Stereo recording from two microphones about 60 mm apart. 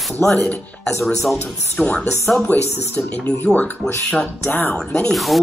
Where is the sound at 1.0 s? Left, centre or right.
Centre.